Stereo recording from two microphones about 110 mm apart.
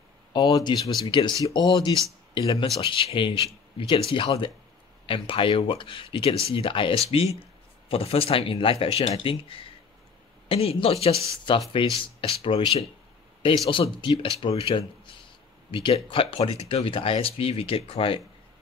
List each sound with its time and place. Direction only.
0.3 s speech: 35° left (ahead or behind)
1.0 s speech: 45° left (ahead or behind)
2.8 s speech: 55° left (ahead or behind)
11.5 s speech: 45° left (ahead or behind)